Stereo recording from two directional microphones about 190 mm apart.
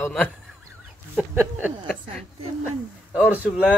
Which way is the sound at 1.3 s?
10° right (ahead or behind).